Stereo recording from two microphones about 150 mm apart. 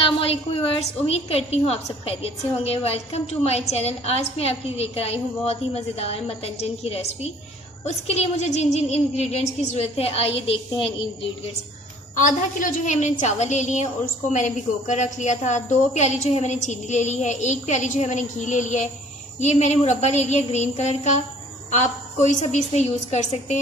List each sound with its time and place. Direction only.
0.0 s a woman's voice: 40° left (ahead or behind)
12.2 s a woman's voice: 55° left (ahead or behind)